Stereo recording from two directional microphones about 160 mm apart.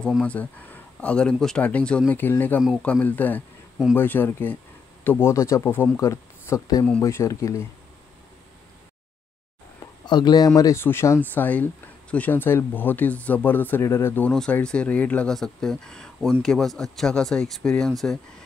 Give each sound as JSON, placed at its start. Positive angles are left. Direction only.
{"t": 0.0, "sound": "speech", "side_deg": 5}
{"t": 10.0, "sound": "speech", "side_deg": 25}